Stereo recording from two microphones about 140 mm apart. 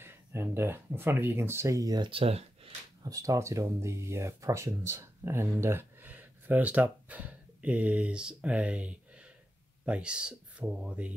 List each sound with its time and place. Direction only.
0.0 s speech: 20° right (ahead or behind); by 2.7 s 45° right (ahead or behind)
3.0 s speech: 25° right (ahead or behind)